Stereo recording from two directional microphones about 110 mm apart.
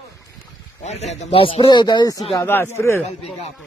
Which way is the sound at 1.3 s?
55° left (ahead or behind).